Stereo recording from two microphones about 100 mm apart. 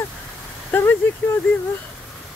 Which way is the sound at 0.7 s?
20° left (ahead or behind).